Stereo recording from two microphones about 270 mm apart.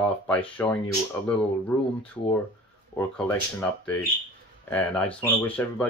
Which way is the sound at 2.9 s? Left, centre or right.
Centre.